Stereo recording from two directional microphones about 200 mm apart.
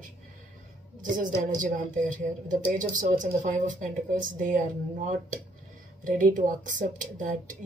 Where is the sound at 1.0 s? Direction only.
40° right (ahead or behind).